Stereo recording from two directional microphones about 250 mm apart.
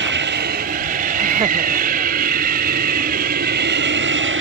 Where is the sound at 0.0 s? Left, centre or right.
Right.